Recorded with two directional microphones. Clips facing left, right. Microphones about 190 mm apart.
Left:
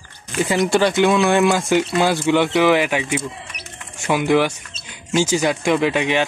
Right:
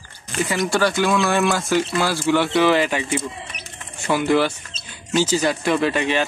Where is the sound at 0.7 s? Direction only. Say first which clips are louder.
Left 3 dB; 20° left (ahead or behind).